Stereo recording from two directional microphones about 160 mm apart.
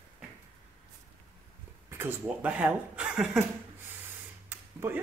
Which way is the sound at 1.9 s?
15° right (ahead or behind).